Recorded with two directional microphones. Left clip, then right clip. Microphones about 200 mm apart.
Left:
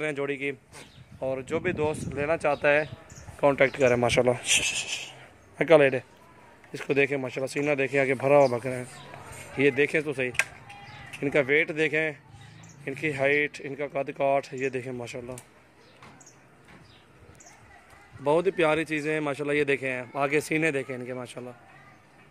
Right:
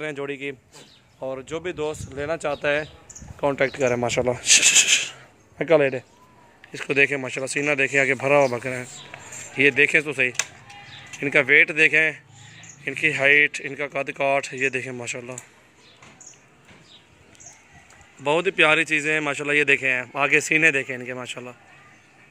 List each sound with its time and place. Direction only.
0.0 s speech: centre (ahead or behind)
4.4 s speech: 25° right (ahead or behind)
4.6 s a sound: 45° right (ahead or behind)
5.6 s speech: 5° right (ahead or behind)
18.2 s speech: 5° left (ahead or behind)